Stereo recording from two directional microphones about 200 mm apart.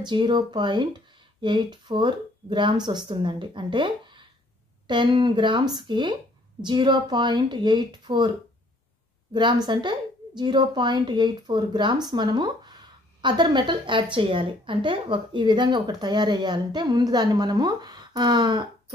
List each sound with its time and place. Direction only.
0.0 s a woman's voice: 20° right (ahead or behind)
9.3 s a woman's voice: 20° right (ahead or behind)